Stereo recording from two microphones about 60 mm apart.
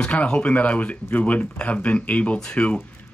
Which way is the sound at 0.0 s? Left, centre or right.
Centre.